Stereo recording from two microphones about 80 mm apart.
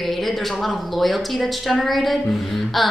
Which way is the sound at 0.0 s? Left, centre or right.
Centre.